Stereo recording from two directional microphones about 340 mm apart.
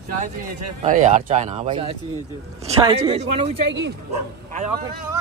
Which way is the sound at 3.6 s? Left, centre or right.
Right.